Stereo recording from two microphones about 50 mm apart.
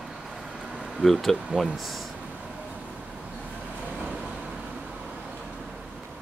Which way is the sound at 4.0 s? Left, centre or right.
Centre.